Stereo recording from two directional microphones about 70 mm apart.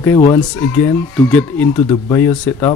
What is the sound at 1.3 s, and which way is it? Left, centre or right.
Speech, left.